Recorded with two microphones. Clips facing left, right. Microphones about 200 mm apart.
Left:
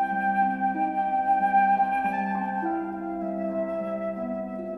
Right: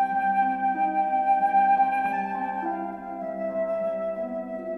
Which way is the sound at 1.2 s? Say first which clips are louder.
Even; 15° right (ahead or behind).